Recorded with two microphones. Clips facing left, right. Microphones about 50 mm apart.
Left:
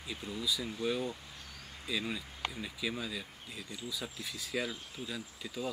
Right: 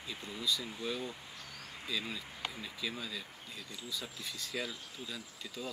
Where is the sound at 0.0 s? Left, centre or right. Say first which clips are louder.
Left 1 dB; centre.